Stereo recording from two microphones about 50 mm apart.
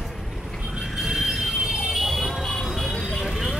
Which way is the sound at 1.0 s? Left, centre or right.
Centre.